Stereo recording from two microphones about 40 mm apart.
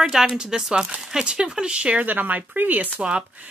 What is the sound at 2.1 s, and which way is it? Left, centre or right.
Speech, right.